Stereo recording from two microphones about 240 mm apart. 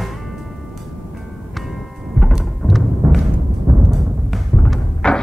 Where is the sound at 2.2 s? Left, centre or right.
Centre.